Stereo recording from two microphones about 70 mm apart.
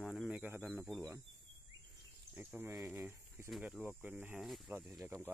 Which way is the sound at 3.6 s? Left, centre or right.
Centre.